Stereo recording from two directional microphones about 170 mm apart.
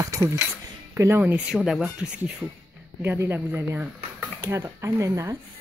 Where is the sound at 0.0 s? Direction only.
20° right (ahead or behind).